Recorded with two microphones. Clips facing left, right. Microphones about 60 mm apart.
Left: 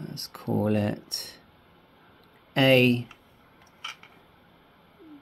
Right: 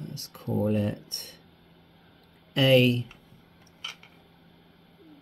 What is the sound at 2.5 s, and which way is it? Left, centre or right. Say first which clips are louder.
Speech: left 1 dB; left.